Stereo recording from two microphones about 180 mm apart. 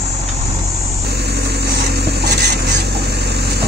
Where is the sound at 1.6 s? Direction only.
65° right (ahead or behind).